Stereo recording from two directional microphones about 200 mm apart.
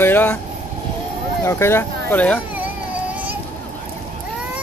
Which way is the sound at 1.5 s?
10° left (ahead or behind).